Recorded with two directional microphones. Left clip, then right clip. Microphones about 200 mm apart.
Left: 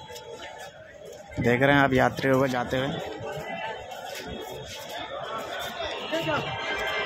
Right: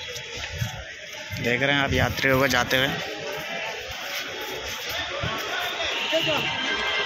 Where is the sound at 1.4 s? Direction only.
30° left (ahead or behind).